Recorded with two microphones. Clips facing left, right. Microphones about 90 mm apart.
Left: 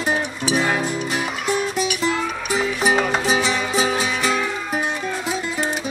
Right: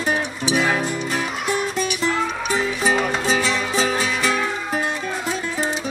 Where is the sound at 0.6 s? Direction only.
10° left (ahead or behind).